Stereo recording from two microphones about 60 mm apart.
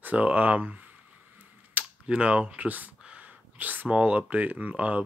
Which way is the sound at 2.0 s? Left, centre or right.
Centre.